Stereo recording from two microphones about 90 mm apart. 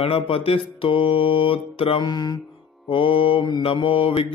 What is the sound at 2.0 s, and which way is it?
Speech, 50° left (ahead or behind).